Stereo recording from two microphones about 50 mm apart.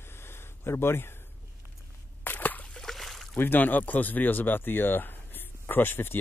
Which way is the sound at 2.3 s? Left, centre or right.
Left.